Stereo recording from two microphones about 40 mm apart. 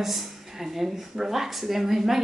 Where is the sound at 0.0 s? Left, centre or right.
Centre.